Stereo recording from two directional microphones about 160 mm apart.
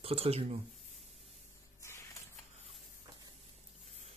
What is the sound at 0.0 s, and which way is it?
Speech, 35° right (ahead or behind).